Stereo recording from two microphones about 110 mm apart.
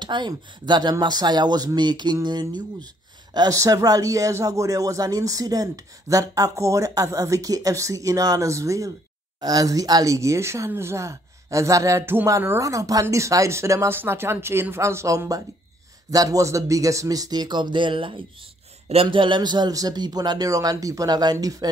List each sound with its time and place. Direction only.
0.0 s a man's voice: 45° right (ahead or behind)